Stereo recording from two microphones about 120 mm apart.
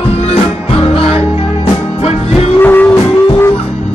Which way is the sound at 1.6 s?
55° left (ahead or behind).